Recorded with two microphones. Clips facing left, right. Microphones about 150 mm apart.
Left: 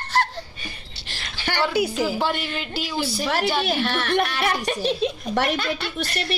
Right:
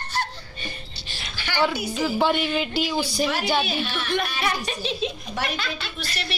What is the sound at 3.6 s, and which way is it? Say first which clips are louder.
Speech: left 4 dB; 70° left (ahead or behind).